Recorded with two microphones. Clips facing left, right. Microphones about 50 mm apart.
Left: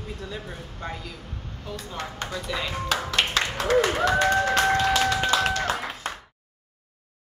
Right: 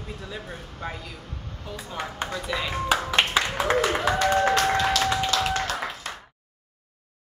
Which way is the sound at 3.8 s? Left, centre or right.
Centre.